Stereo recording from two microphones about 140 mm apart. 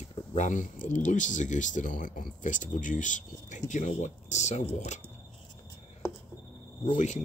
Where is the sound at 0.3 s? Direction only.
60° left (ahead or behind).